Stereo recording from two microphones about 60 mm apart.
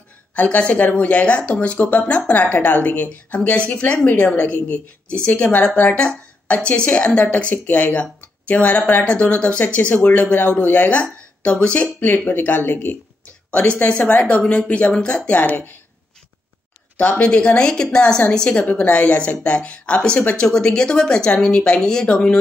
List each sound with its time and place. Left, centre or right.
0.4 s a woman's voice: left
13.5 s a woman's voice: left
16.9 s a woman's voice: left